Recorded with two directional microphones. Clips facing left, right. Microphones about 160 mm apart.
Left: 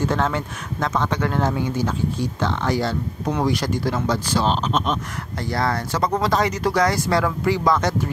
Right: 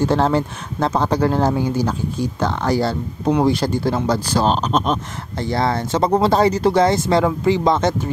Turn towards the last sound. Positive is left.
turn(degrees=-25)  # may be behind; listen again after turning